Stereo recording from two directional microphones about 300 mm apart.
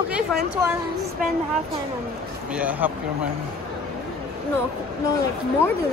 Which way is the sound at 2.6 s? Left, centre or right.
Centre.